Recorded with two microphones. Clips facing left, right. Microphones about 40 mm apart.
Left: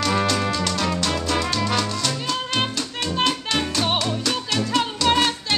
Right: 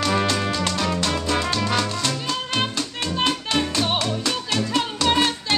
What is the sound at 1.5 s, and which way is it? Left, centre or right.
Music, centre.